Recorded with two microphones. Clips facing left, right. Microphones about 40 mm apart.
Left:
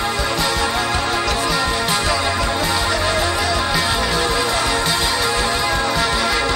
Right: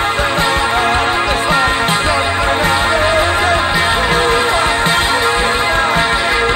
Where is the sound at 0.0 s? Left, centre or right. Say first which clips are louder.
Right 6 dB; right.